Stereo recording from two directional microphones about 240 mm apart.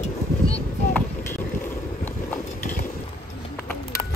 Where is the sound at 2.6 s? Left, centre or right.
Left.